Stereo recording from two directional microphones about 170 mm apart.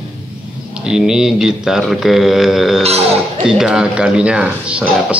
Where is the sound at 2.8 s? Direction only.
35° right (ahead or behind).